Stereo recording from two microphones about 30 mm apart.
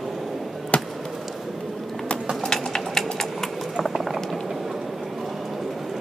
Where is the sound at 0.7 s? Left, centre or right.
Left.